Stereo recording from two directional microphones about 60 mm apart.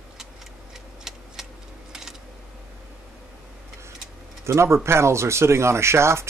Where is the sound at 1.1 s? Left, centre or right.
Centre.